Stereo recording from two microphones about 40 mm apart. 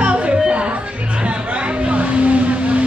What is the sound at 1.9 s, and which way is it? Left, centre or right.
Vehicle, right.